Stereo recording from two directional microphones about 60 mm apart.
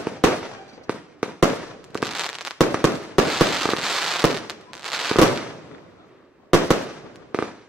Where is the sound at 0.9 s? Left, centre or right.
Right.